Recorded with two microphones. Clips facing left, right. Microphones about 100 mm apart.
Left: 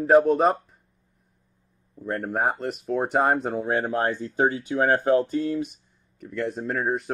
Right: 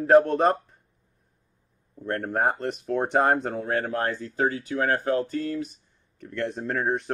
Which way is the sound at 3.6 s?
20° left (ahead or behind).